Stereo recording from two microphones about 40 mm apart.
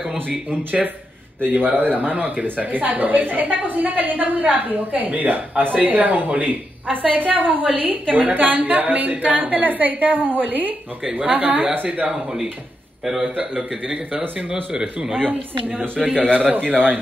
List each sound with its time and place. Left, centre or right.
1.5 s a woman's voice: right
13.0 s a man's voice: centre
14.5 s a man's voice: centre
15.2 s speech: right